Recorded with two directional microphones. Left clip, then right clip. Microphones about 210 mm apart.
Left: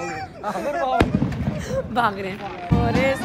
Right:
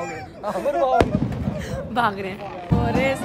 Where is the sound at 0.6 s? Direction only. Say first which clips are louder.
Right 3 dB; 50° right (ahead or behind).